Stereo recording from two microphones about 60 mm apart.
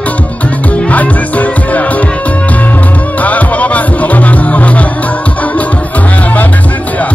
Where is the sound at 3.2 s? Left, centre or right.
Left.